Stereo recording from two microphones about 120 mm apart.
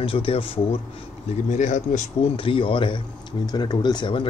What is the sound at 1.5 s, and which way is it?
Speech, 80° left.